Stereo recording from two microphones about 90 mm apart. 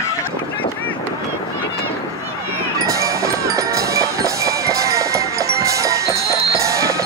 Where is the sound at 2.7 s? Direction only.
40° right (ahead or behind).